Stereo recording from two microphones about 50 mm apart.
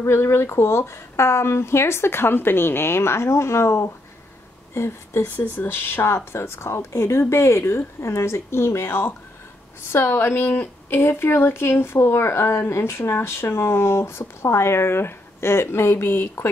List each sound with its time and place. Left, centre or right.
0.0 s speech: left
8.8 s a woman's voice: left
10.5 s speech: left